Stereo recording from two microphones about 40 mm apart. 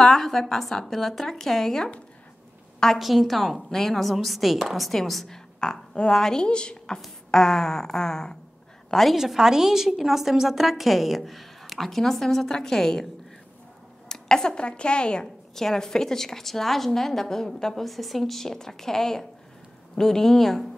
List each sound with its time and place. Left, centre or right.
0.0 s speech: centre
3.0 s a woman's voice: centre
5.6 s a woman's voice: centre
9.1 s a woman's voice: centre
14.0 s speech: centre
15.5 s speech: centre